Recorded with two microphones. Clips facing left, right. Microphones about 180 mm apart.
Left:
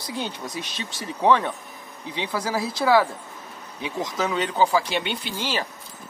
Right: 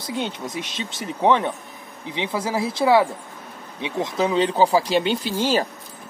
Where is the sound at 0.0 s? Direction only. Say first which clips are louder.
Right 3 dB; 20° right (ahead or behind).